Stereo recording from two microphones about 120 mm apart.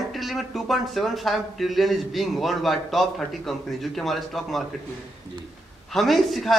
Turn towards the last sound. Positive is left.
turn(degrees=0)  # may be behind; listen again after turning